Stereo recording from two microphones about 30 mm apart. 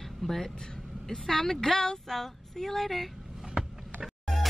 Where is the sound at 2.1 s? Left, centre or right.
Centre.